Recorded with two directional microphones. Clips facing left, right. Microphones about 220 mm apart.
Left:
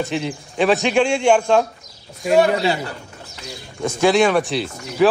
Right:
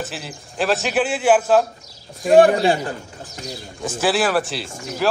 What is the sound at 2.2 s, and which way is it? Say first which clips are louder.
Speech: right 3 dB; 50° right (ahead or behind).